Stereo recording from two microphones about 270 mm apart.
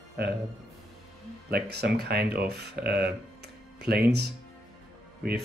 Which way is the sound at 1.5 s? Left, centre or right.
Right.